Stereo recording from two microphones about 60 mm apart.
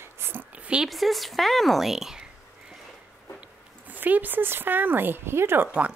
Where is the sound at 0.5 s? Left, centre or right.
Right.